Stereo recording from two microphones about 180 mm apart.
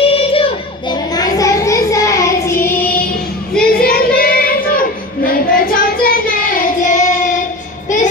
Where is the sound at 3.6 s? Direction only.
55° left (ahead or behind).